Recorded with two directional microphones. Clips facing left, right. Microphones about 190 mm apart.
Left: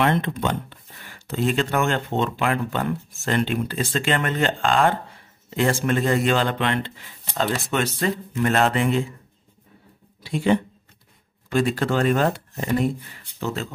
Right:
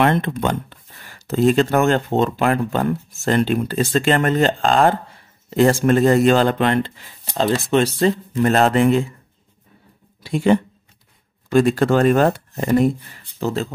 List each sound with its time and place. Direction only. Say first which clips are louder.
0.0 s speech: right 4 dB; 50° right (ahead or behind)
7.3 s speech: right 6 dB; 30° right (ahead or behind)
10.2 s speech: right 4 dB; 45° right (ahead or behind)
13.4 s speech: right 6 dB; 35° right (ahead or behind)